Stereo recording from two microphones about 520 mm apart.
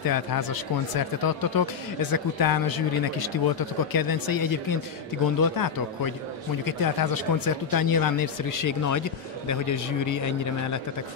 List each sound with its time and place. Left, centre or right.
0.0 s speech: left